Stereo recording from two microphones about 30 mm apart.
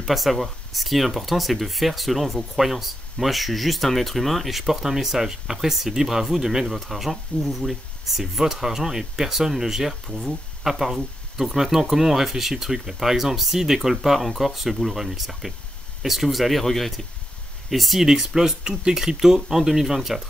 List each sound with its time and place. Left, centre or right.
0.0 s speech: centre
18.0 s speech: centre